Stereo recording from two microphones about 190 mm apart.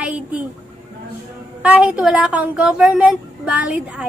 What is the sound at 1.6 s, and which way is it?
A woman's voice, 10° right (ahead or behind).